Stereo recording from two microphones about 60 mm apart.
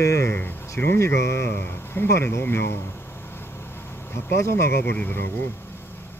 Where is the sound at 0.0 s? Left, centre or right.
Left.